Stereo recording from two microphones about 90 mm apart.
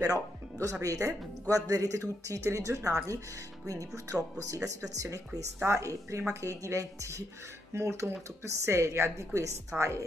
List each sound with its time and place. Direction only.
0.0 s speech: 40° right (ahead or behind)